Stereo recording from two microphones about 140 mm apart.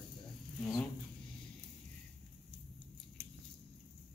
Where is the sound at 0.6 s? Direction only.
Centre (ahead or behind).